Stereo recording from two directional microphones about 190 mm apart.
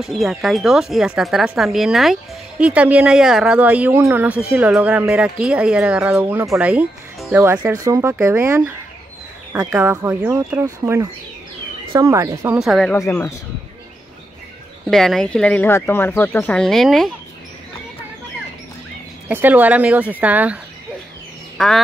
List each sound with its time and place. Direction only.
0.0 s speech: centre (ahead or behind)
12.5 s speech: centre (ahead or behind)
12.9 s speech: 15° left (ahead or behind)
14.9 s speech: centre (ahead or behind)
19.2 s speech: 10° right (ahead or behind)
21.5 s duck: centre (ahead or behind)